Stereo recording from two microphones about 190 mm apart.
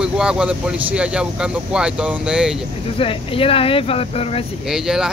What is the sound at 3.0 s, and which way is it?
Speech, 30° left (ahead or behind).